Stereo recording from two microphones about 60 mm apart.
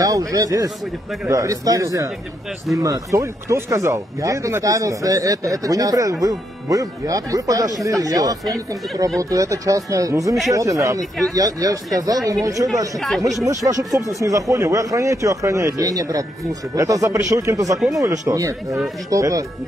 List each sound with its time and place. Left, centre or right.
0.0 s a man's voice: right
9.2 s speech: right
11.3 s speech: right
13.9 s speech: right
16.7 s speech: right
17.9 s speech: right